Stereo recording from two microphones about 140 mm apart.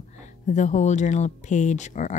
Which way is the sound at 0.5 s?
60° left (ahead or behind).